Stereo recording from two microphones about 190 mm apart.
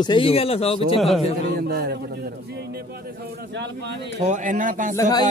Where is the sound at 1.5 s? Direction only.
55° right (ahead or behind).